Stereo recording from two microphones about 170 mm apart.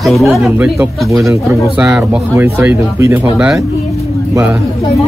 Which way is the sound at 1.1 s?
20° right (ahead or behind).